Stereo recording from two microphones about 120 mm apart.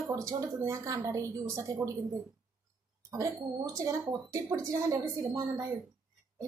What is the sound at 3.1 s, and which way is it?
A woman's voice, 25° right (ahead or behind).